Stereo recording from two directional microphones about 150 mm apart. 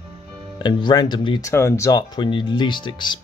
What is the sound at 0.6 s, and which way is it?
Speech, 30° left (ahead or behind).